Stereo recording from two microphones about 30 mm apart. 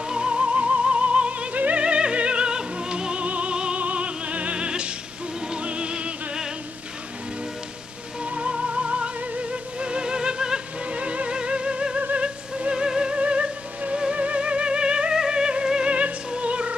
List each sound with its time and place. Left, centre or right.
0.1 s music: right
1.5 s music: right
1.8 s music: right
3.3 s music: right
4.6 s music: right
8.2 s music: right
10.9 s music: right
12.7 s music: right
13.2 s music: right